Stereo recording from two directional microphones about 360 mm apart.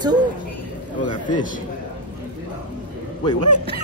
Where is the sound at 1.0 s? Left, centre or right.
Centre.